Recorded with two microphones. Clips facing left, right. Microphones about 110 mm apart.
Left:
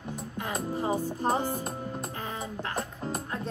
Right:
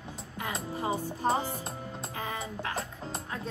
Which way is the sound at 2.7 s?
50° left (ahead or behind).